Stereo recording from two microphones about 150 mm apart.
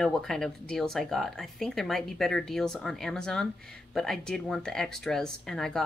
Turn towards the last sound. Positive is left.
turn(degrees=5)  # may be behind; listen again after turning